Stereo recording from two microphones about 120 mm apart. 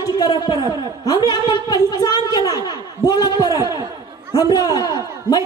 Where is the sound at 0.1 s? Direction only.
35° left (ahead or behind).